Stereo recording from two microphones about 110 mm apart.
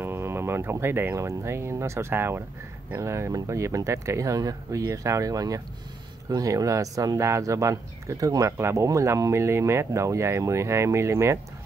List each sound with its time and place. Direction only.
0.0 s speech: 20° right (ahead or behind)